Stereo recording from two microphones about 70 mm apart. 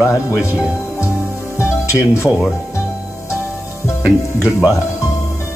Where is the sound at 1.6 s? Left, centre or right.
Left.